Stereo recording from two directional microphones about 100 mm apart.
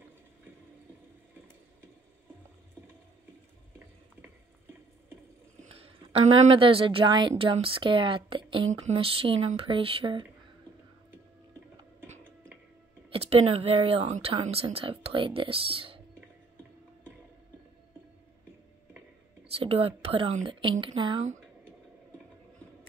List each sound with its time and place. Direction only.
5.7 s speech: 75° right (ahead or behind)
7.1 s a woman's voice: 50° right (ahead or behind); by 10.2 s 65° right (ahead or behind)
13.1 s speech: 85° right; by 16.0 s 65° right (ahead or behind)
19.4 s speech: 80° right; by 21.2 s 55° right (ahead or behind)